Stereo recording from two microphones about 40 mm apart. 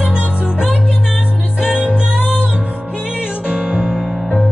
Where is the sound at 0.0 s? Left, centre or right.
Right.